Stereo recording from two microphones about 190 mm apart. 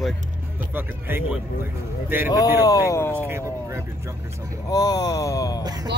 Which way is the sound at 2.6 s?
15° left (ahead or behind).